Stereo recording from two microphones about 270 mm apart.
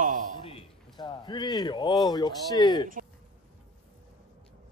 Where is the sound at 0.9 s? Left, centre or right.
Centre.